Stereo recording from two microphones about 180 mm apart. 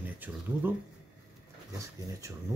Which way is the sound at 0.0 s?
10° right (ahead or behind).